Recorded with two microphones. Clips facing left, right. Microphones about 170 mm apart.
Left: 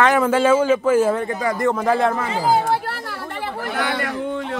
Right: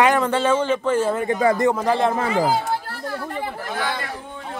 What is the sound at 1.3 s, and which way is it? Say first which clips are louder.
Speech: right 4 dB; 25° right (ahead or behind).